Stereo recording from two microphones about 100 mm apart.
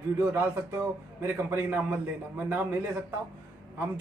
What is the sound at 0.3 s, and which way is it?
A man's voice, 20° right (ahead or behind).